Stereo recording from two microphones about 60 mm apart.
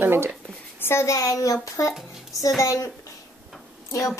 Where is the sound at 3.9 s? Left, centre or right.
Left.